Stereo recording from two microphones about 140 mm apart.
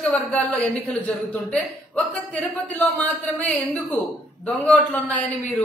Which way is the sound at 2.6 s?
10° left (ahead or behind).